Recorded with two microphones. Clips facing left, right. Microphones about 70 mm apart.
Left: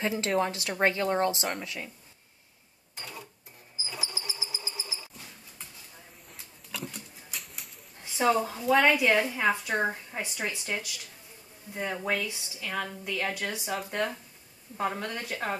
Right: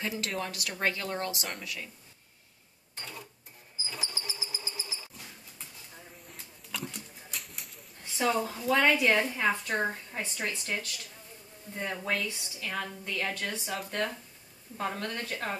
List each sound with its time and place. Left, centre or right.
0.0 s speech: left
3.0 s speech: centre
3.8 s a sound: centre
7.2 s pigeon: centre
8.1 s a woman's voice: centre